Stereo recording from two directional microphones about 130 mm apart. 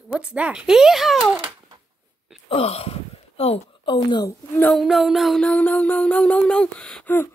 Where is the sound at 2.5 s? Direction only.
50° left (ahead or behind).